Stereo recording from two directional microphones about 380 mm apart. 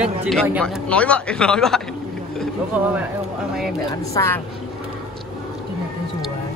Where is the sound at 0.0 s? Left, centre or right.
Centre.